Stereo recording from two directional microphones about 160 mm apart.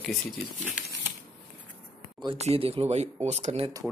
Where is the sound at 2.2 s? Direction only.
40° right (ahead or behind).